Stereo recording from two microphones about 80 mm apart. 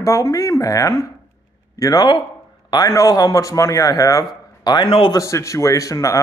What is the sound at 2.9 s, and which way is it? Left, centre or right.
A man's voice, left.